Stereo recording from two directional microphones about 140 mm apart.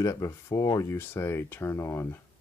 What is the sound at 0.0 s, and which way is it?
Speech, 25° left (ahead or behind).